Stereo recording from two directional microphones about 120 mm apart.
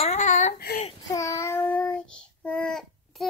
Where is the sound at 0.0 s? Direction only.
70° left (ahead or behind); by 0.9 s 90° left.